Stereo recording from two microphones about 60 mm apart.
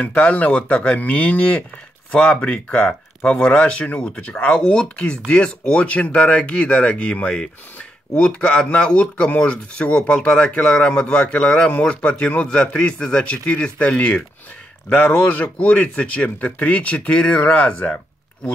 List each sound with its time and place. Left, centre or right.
0.0 s speech: left